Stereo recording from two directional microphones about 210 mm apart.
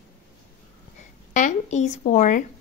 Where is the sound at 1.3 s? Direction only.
35° left (ahead or behind).